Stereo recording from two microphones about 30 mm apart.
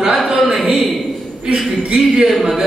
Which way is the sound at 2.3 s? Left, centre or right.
Centre.